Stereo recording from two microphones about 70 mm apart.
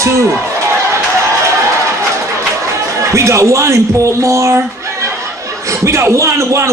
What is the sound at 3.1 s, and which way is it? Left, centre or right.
A man's voice, right.